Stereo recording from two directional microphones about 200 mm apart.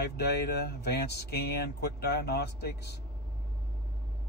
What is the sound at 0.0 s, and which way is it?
Speech, 55° left (ahead or behind).